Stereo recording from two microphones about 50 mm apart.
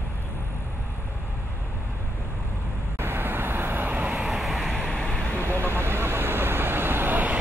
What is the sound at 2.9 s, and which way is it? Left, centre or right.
Vehicle, right.